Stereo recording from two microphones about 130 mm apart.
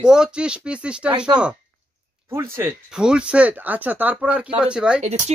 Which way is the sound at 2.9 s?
5° right (ahead or behind).